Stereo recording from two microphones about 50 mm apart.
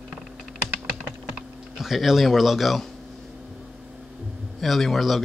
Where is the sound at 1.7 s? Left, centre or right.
Centre.